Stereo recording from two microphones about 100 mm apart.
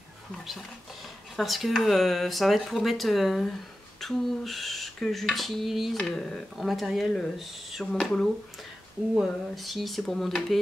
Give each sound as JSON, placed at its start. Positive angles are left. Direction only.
{"t": 1.3, "sound": "speech", "side_deg": 0}